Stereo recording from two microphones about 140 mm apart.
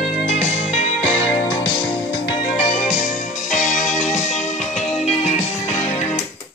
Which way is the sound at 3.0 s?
65° left (ahead or behind).